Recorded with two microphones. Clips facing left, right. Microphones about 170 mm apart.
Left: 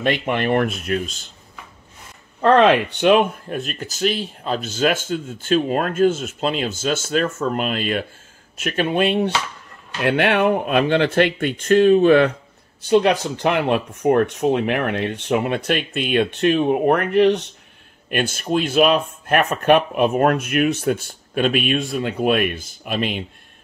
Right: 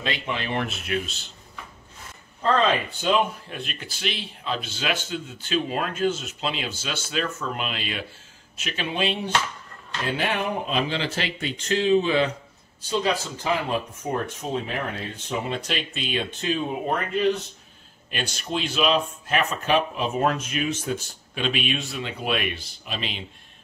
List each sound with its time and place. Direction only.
0.0 s speech: 55° left (ahead or behind)
2.4 s speech: 75° left (ahead or behind)
3.4 s speech: 45° left (ahead or behind)
10.0 s speech: 70° left (ahead or behind)
18.1 s speech: 50° left (ahead or behind)